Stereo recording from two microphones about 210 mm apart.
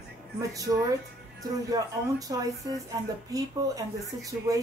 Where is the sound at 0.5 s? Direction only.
15° right (ahead or behind).